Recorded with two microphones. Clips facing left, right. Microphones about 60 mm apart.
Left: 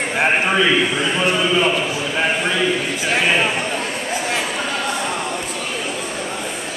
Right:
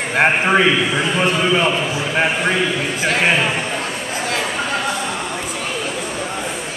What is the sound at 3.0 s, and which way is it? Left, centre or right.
Speech, right.